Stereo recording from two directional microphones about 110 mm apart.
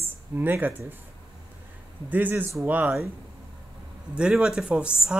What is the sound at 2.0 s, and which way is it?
Speech, 15° right (ahead or behind).